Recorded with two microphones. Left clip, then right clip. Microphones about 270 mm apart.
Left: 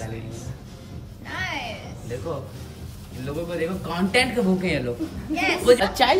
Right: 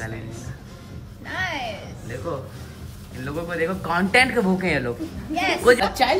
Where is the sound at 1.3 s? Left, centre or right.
Centre.